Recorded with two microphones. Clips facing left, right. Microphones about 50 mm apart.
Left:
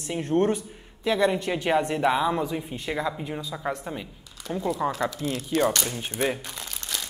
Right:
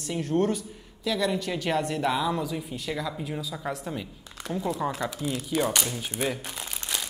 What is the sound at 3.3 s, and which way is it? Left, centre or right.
Speech, centre.